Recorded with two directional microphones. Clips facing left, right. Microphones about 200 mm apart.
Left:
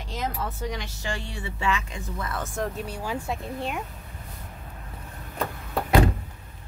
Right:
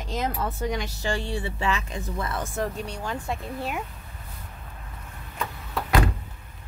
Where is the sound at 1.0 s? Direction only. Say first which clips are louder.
Right 5 dB; 30° right (ahead or behind).